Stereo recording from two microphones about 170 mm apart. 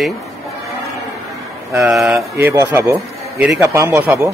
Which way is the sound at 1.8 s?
Centre (ahead or behind).